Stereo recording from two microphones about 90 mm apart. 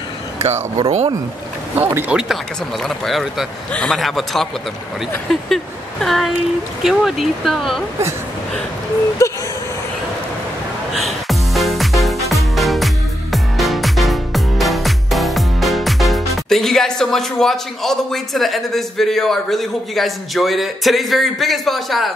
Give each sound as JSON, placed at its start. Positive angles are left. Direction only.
{"t": 0.7, "sound": "speech", "side_deg": -50}
{"t": 1.8, "sound": "speech", "side_deg": -20}
{"t": 2.8, "sound": "speech", "side_deg": 0}
{"t": 9.2, "sound": "a sound", "side_deg": 35}
{"t": 10.9, "sound": "music", "side_deg": 0}